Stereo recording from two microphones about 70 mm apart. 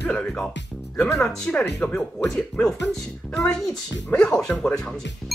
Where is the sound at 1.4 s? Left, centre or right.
Centre.